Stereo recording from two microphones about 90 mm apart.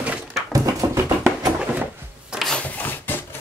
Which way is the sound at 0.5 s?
40° right (ahead or behind).